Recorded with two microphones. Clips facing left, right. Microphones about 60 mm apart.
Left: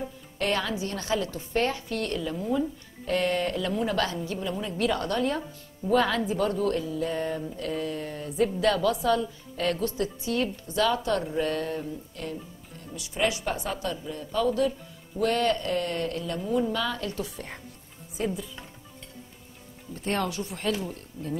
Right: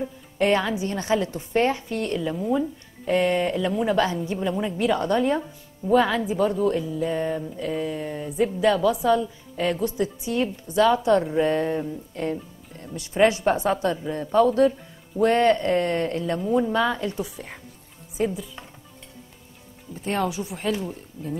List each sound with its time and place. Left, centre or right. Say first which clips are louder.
0.4 s a woman's voice: right 6 dB; centre
5.4 s speech: right 2 dB; centre
12.9 s a woman's voice: right 8 dB; right
18.1 s speech: right 5 dB; centre
19.9 s speech: right 3 dB; centre